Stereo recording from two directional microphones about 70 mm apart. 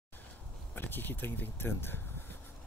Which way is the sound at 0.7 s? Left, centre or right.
Left.